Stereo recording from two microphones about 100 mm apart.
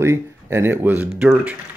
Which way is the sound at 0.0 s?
25° right (ahead or behind).